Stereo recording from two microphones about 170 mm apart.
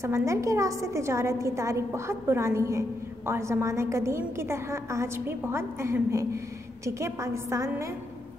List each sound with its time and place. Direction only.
0.0 s a woman's voice: 15° right (ahead or behind)